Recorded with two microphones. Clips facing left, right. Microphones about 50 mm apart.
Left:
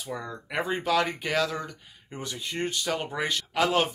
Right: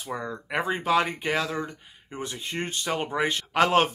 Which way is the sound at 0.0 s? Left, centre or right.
Right.